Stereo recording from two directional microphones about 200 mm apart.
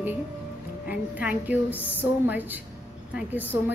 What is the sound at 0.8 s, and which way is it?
A woman's voice, 5° right (ahead or behind).